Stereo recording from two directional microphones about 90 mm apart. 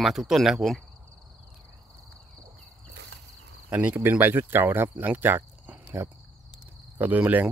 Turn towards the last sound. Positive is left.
turn(degrees=-20)  # may be behind; listen again after turning